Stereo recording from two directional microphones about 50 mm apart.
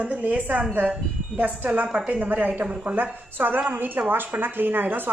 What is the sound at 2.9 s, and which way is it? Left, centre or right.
A woman's voice, right.